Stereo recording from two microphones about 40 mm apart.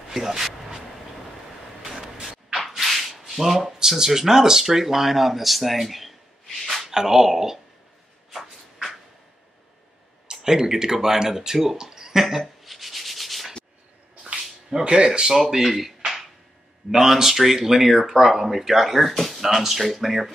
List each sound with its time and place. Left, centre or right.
0.1 s a sound: centre
1.8 s vehicle: centre
2.2 s speech: centre
6.6 s a sound: centre
6.9 s speech: centre
10.3 s a sound: centre
14.9 s speech: right
15.3 s speech: centre
16.9 s speech: centre